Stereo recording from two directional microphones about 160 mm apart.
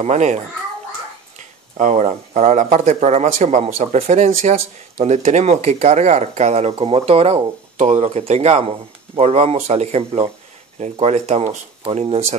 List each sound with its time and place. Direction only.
0.0 s speech: 45° right (ahead or behind)
1.8 s speech: 45° right (ahead or behind)